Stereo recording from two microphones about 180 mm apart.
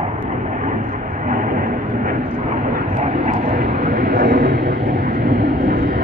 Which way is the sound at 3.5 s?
60° right (ahead or behind).